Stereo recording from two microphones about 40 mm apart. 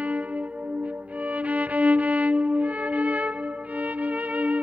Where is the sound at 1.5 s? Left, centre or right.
Right.